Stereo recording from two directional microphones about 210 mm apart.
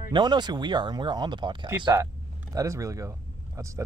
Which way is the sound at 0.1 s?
20° right (ahead or behind).